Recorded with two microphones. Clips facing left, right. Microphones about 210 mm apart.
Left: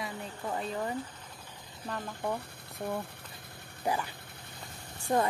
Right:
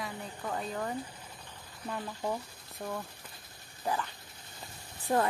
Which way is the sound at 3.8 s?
15° left (ahead or behind).